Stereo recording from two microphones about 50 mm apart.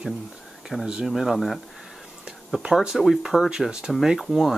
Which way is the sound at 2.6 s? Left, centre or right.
Centre.